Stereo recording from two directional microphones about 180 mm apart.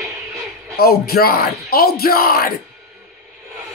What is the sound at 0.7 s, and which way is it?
Speech, 60° left (ahead or behind).